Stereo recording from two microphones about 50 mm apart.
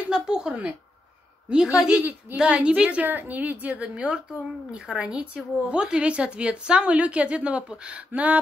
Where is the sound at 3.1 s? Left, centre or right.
Right.